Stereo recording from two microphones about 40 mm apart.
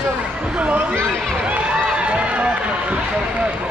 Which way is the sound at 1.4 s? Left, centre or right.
Right.